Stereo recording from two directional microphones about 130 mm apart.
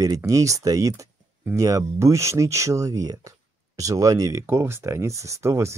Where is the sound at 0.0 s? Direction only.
25° right (ahead or behind).